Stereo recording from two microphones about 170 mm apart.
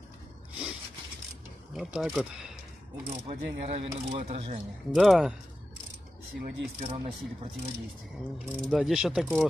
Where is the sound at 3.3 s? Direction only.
40° right (ahead or behind).